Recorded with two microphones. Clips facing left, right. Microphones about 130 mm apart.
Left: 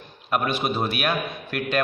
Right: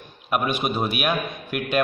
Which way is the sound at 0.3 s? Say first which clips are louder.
Even; 15° right (ahead or behind).